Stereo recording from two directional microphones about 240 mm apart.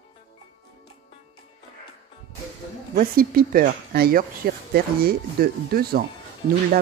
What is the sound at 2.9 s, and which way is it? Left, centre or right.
Speech, right.